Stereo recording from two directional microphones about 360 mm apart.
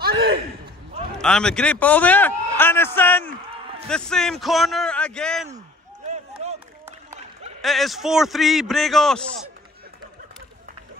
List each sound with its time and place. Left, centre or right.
0.0 s a sound: right
1.2 s a man's voice: centre
6.0 s run: centre
7.6 s a man's voice: centre